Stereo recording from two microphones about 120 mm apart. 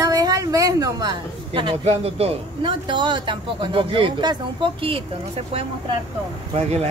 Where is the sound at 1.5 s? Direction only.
45° right (ahead or behind).